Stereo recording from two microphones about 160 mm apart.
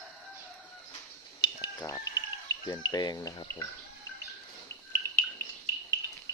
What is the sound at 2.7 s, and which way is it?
Speech, 25° left (ahead or behind).